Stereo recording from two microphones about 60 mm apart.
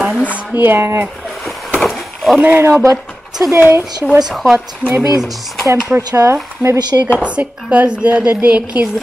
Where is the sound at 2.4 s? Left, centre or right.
Right.